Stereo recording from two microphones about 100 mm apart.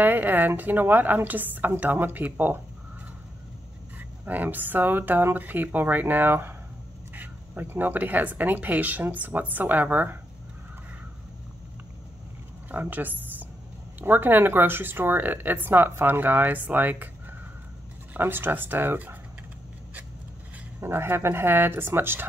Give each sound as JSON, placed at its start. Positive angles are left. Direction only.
{"t": 0.0, "sound": "speech", "side_deg": -20}
{"t": 4.3, "sound": "speech", "side_deg": -15}
{"t": 12.7, "sound": "a woman's voice", "side_deg": -20}
{"t": 18.1, "sound": "speech", "side_deg": -20}
{"t": 20.8, "sound": "speech", "side_deg": -25}